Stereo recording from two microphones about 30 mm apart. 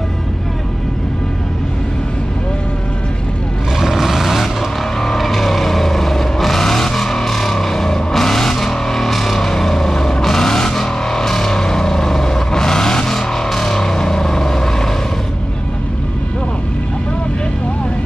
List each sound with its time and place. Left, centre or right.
3.8 s vehicle: centre